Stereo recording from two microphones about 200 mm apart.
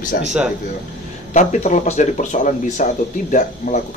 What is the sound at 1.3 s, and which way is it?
Speech, 35° left (ahead or behind).